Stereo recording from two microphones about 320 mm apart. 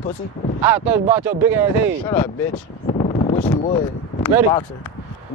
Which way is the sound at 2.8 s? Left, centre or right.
Left.